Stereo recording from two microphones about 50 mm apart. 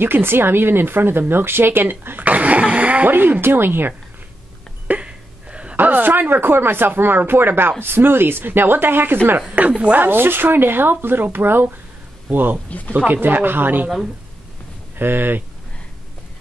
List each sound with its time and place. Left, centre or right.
0.0 s speech: right
3.1 s speech: right
4.8 s a sound: right
5.8 s speech: right
9.5 s speech: right
10.0 s speech: right
12.6 s speech: left
12.9 s speech: right
15.0 s speech: right